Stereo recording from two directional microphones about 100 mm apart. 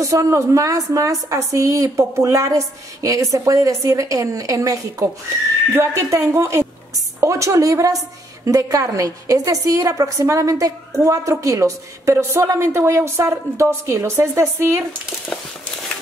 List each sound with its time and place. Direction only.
0.0 s a woman's voice: 35° right (ahead or behind)